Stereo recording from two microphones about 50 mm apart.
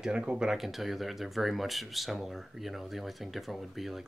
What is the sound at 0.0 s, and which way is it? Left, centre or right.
Speech, centre.